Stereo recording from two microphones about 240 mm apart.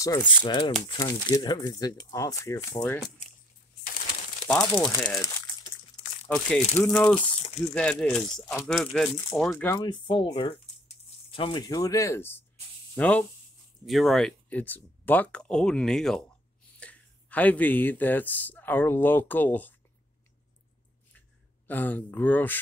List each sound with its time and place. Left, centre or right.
0.5 s speech: centre
4.5 s speech: centre
4.9 s a sound: centre
6.2 s speech: centre
21.6 s speech: centre